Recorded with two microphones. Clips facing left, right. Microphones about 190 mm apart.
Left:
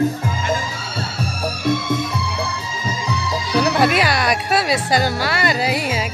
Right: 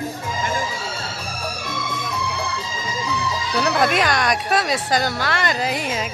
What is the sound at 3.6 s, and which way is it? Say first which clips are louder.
Speech: left 1 dB; 5° left (ahead or behind).